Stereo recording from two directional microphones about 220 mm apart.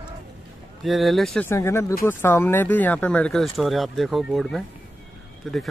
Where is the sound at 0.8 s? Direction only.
Centre (ahead or behind).